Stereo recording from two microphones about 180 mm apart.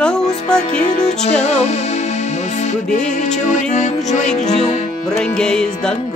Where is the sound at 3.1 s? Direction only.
40° left (ahead or behind).